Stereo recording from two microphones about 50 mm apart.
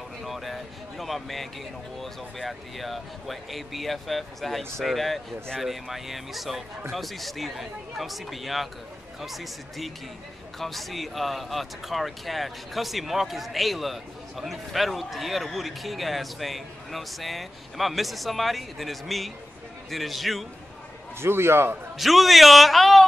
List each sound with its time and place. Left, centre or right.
0.2 s speech: centre
21.2 s a man's voice: right
21.9 s speech: centre